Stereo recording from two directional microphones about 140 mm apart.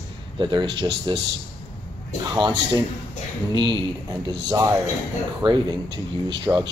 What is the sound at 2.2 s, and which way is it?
Speech, 30° right (ahead or behind).